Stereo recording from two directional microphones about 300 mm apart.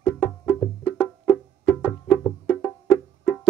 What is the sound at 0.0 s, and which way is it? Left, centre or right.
Music, centre.